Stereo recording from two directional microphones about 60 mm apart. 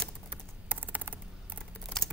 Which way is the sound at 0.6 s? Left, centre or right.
Right.